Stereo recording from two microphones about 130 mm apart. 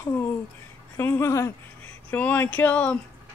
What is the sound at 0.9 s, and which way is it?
Speech, 20° left (ahead or behind).